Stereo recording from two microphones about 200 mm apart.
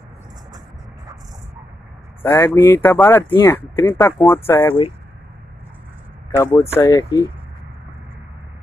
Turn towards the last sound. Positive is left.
turn(degrees=15)  # may be behind; listen again after turning